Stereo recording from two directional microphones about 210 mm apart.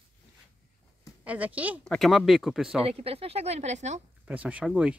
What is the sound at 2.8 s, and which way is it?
Speech, 30° right (ahead or behind).